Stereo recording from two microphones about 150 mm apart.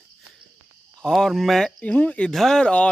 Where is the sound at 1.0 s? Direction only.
5° left (ahead or behind).